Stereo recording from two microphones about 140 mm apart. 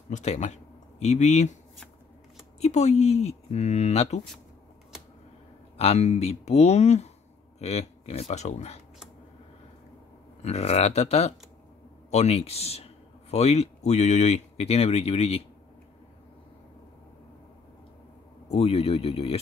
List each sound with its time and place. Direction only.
0.1 s speech: 55° left (ahead or behind)
2.6 s speech: 55° left (ahead or behind)
5.8 s speech: 50° left (ahead or behind)
10.4 s speech: 50° left (ahead or behind)
18.5 s speech: 45° left (ahead or behind)